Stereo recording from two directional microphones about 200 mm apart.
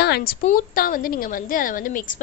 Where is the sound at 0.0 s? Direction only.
50° left (ahead or behind).